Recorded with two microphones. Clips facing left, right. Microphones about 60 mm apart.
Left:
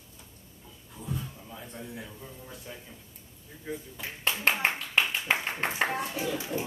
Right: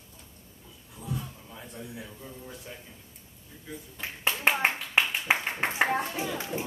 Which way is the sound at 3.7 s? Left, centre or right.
Left.